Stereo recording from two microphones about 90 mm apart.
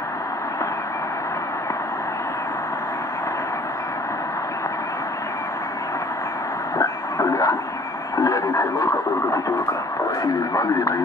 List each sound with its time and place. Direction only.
6.8 s a sound: 40° left (ahead or behind)
8.2 s radio: 40° left (ahead or behind)
10.2 s speech: 45° left (ahead or behind)